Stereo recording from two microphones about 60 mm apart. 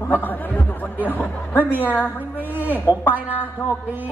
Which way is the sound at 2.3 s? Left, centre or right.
Right.